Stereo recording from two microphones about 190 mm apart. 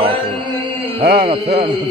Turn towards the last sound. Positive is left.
turn(degrees=-55)  # may be behind; listen again after turning